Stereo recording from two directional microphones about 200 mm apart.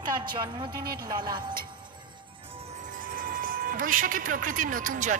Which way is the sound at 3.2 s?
45° right (ahead or behind).